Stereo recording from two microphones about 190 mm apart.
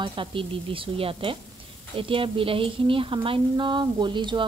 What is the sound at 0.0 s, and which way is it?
A woman's voice, 25° right (ahead or behind).